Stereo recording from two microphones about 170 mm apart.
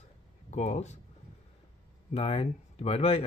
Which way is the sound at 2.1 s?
35° left (ahead or behind).